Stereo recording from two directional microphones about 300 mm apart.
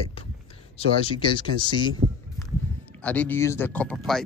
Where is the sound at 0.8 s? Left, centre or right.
Centre.